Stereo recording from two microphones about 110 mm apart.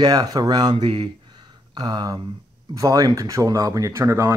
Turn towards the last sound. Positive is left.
turn(degrees=-25)  # may be behind; listen again after turning